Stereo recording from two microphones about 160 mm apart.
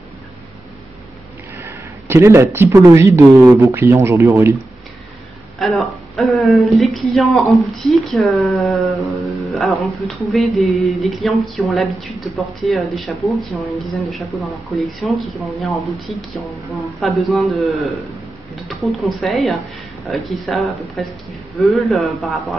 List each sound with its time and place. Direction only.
1.6 s speech: 15° right (ahead or behind)
5.6 s a woman's voice: centre (ahead or behind)
7.6 s a sound: centre (ahead or behind)